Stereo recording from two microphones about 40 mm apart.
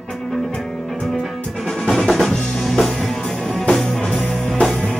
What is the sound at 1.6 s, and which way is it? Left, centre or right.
Music, centre.